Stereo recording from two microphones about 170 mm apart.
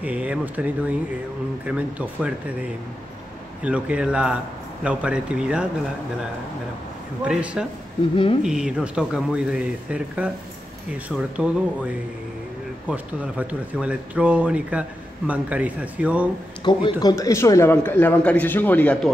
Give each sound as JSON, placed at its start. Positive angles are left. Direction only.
{"t": 0.0, "sound": "speech", "side_deg": -10}
{"t": 3.6, "sound": "speech", "side_deg": -5}
{"t": 7.2, "sound": "a man's voice", "side_deg": -5}
{"t": 16.7, "sound": "a man's voice", "side_deg": 30}